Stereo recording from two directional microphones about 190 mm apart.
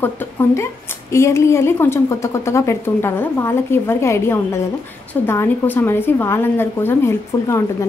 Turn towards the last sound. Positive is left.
turn(degrees=15)  # may be behind; listen again after turning